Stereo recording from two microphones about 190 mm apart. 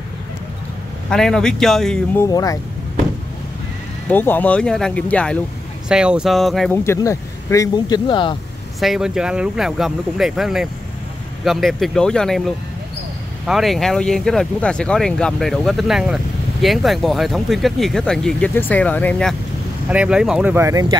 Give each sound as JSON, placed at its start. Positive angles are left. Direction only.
{"t": 1.1, "sound": "speech", "side_deg": 5}
{"t": 2.1, "sound": "speech", "side_deg": 20}
{"t": 4.1, "sound": "speech", "side_deg": 10}
{"t": 5.9, "sound": "speech", "side_deg": -5}
{"t": 6.8, "sound": "speech", "side_deg": 15}
{"t": 8.7, "sound": "speech", "side_deg": 0}
{"t": 19.9, "sound": "speech", "side_deg": -5}